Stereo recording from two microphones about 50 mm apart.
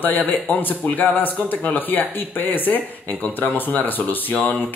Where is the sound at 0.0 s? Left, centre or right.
Left.